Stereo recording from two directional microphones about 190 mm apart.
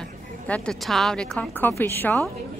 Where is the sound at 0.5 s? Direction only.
5° left (ahead or behind).